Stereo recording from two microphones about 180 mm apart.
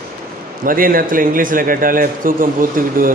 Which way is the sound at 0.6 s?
50° right (ahead or behind).